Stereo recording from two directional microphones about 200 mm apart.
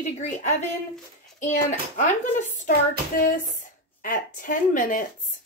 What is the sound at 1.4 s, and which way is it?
A woman's voice, 40° left (ahead or behind).